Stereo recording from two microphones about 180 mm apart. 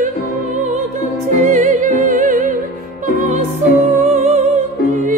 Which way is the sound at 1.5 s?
45° right (ahead or behind).